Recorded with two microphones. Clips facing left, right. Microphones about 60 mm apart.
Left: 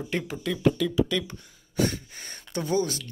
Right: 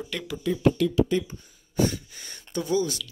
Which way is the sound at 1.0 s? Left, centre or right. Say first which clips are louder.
Right 3 dB; left.